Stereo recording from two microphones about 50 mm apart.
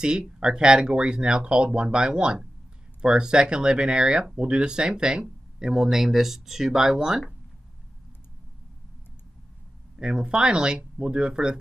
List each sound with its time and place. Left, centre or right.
0.0 s speech: centre
9.9 s speech: centre